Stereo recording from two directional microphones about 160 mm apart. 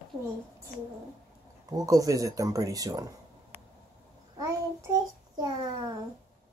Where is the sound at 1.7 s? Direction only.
20° right (ahead or behind).